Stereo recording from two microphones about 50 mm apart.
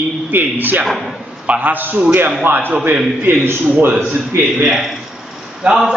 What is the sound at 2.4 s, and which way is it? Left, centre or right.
Speech, right.